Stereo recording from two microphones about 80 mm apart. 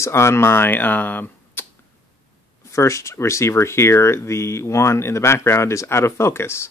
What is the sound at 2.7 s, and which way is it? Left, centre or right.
Speech, left.